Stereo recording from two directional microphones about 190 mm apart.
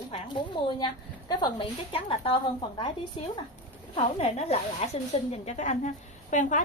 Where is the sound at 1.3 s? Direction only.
25° left (ahead or behind).